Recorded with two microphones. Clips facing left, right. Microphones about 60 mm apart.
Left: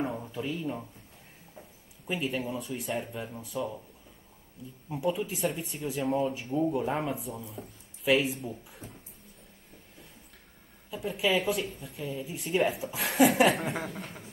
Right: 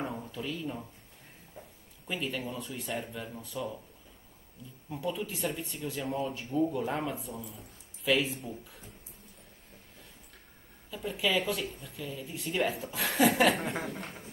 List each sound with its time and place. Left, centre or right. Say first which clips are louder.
0.4 s speech: left 3 dB; left
2.0 s speech: left 3 dB; centre
3.1 s speech: left 2 dB; centre
3.3 s speech: left 4 dB; centre
6.5 s speech: even; centre
7.1 s speech: left 2 dB; centre
10.9 s speech: left 3 dB; centre